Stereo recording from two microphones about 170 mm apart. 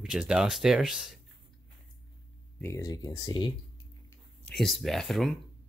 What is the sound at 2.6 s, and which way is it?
Speech, 20° left (ahead or behind).